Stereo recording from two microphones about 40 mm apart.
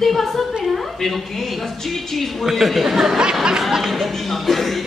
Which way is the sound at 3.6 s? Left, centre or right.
Centre.